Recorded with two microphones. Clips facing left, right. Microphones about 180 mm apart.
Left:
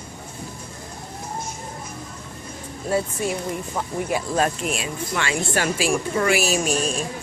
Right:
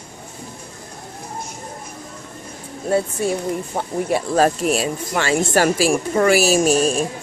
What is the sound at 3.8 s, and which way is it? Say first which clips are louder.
Speech: right 3 dB; 30° right (ahead or behind).